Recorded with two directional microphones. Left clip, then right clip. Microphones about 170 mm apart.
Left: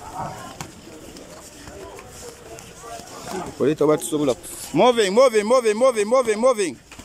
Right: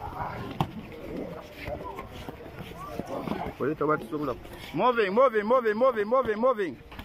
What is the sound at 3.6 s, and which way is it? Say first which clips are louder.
Speech: left 9 dB; 30° left (ahead or behind).